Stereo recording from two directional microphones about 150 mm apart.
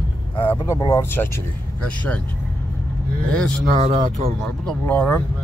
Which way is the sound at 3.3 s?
5° left (ahead or behind).